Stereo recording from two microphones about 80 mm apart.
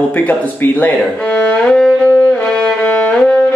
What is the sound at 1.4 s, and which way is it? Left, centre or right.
Music, centre.